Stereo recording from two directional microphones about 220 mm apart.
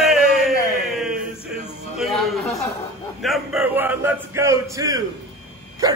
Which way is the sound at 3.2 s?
Centre (ahead or behind).